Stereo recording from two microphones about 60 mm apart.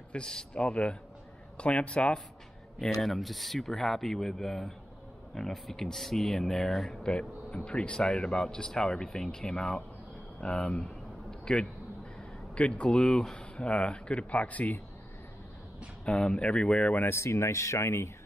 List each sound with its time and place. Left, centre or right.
0.1 s speech: centre
2.8 s speech: centre
7.0 s speech: centre
10.4 s a sound: centre
12.5 s speech: centre
16.1 s speech: centre
17.1 s speech: left